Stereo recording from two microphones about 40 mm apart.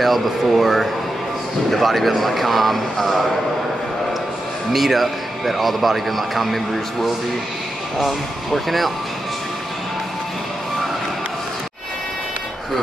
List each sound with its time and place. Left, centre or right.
0.0 s a man's voice: centre
4.7 s a man's voice: centre
8.5 s a man's voice: centre